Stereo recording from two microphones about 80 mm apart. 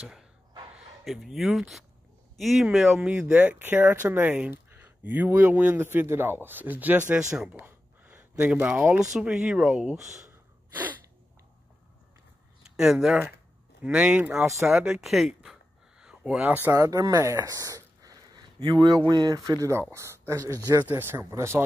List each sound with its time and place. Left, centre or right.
1.0 s speech: centre
3.1 s speech: centre
7.4 s a sound: right
9.1 s speech: centre
10.3 s gasp: right
12.6 s speech: centre
13.8 s speech: centre
14.3 s speech: centre
16.0 s a sound: centre
16.4 s speech: right
16.7 s speech: right
20.9 s speech: right